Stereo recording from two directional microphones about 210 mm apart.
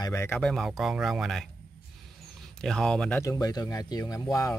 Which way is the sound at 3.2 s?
15° left (ahead or behind).